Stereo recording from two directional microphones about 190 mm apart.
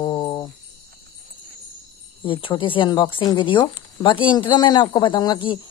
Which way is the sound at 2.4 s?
25° left (ahead or behind).